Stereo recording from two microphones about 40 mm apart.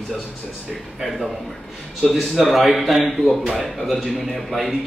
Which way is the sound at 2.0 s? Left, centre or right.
Centre.